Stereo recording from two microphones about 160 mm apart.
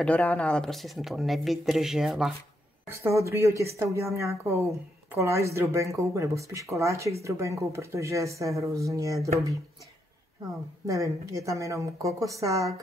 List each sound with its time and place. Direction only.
0.0 s speech: 10° left (ahead or behind)
2.9 s a woman's voice: 15° right (ahead or behind)
10.9 s speech: 20° right (ahead or behind)